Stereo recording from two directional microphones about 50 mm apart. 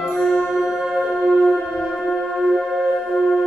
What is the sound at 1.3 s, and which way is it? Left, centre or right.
Singing bowl, centre.